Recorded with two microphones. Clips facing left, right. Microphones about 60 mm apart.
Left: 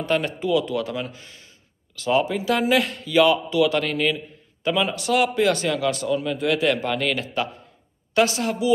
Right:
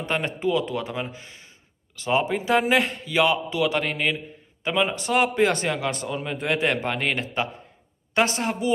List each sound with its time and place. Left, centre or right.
0.0 s a man's voice: right